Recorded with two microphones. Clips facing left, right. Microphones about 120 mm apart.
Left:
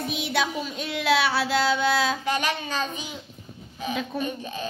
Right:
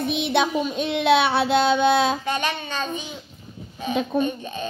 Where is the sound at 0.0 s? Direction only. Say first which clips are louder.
Right 5 dB; 25° right (ahead or behind).